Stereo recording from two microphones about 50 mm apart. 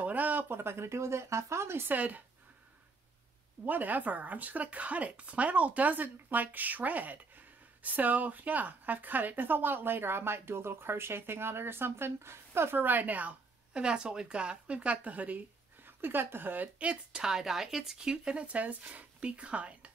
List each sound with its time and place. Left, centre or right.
0.0 s a sound: right
0.5 s speech: right
1.9 s speech: right
3.6 s a woman's voice: right
12.8 s a woman's voice: right
13.8 s speech: centre; by 16.7 s right
16.7 s speech: right
17.2 s speech: centre; by 19.9 s right